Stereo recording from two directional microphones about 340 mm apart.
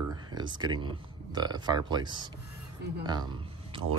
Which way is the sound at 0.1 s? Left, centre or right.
Centre.